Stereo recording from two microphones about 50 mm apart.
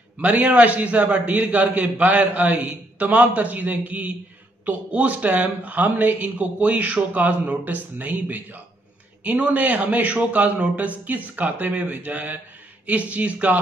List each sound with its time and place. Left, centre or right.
0.2 s speech: right